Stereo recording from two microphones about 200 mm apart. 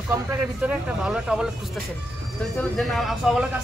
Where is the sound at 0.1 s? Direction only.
10° right (ahead or behind).